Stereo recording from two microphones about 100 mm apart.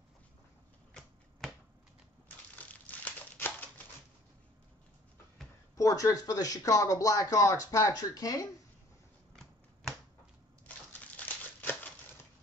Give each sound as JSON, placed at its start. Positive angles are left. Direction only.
{"t": 1.4, "sound": "a sound", "side_deg": 5}
{"t": 5.8, "sound": "speech", "side_deg": 35}
{"t": 11.1, "sound": "crumpling", "side_deg": 15}